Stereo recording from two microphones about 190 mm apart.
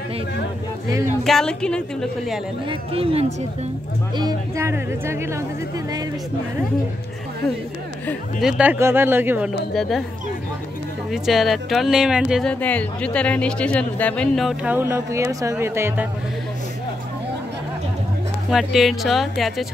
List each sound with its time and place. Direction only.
1.2 s speech: 5° left (ahead or behind)
2.7 s speech: 30° right (ahead or behind)
4.2 s speech: 20° right (ahead or behind)
8.4 s speech: 5° right (ahead or behind)
9.8 s speech: centre (ahead or behind)
11.1 s speech: centre (ahead or behind)
18.5 s speech: centre (ahead or behind)